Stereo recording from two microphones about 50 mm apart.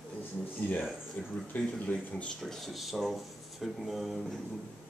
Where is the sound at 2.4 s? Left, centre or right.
Centre.